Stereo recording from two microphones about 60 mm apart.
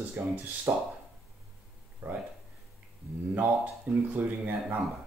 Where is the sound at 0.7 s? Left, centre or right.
Right.